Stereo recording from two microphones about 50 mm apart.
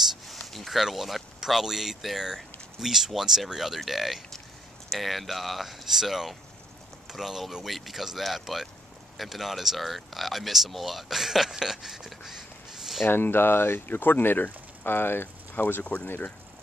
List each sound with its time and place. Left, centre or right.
0.1 s speech: centre
13.0 s speech: left
15.8 s speech: left